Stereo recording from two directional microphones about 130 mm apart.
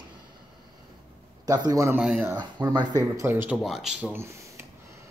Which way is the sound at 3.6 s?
5° right (ahead or behind).